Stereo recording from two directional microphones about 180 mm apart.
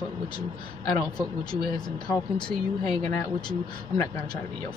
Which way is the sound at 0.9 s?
20° left (ahead or behind).